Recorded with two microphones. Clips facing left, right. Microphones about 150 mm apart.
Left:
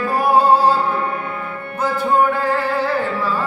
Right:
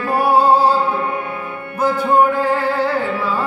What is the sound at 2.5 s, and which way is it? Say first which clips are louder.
Music: right 2 dB; 10° right (ahead or behind).